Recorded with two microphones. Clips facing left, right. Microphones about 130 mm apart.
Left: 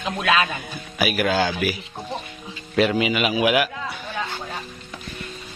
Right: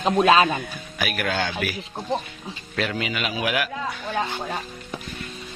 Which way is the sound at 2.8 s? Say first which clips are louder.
Left 7 dB; 10° left (ahead or behind).